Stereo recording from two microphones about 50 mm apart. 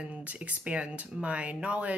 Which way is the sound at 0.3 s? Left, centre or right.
Right.